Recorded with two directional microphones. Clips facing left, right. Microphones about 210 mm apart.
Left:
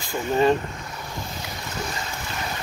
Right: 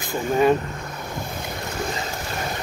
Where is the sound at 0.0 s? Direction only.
15° right (ahead or behind).